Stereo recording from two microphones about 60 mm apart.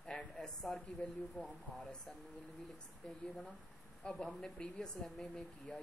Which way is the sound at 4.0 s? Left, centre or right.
Centre.